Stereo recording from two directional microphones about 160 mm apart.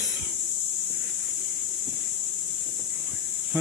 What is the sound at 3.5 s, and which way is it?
Speech, 15° right (ahead or behind).